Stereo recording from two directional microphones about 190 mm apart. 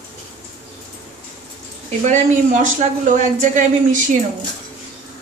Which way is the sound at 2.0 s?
40° right (ahead or behind).